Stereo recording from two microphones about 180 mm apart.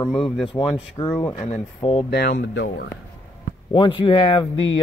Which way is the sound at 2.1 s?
60° left (ahead or behind).